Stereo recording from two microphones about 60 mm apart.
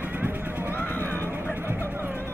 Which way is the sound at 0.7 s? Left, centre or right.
Left.